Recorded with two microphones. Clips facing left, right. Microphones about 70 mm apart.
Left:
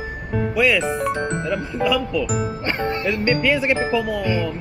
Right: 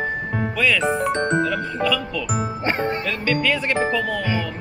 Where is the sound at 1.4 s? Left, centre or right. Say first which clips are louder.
Even; centre.